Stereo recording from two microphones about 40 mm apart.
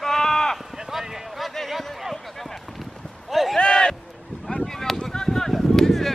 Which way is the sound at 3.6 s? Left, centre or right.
Centre.